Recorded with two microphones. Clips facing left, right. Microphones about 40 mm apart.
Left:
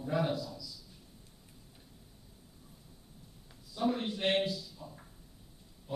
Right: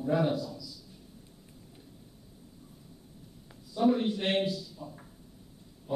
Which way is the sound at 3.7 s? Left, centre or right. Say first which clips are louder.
Right 6 dB; centre.